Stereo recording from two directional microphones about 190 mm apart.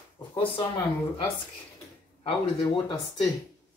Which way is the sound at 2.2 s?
25° left (ahead or behind).